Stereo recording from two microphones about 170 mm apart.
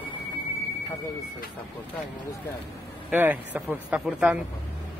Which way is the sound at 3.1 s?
10° right (ahead or behind).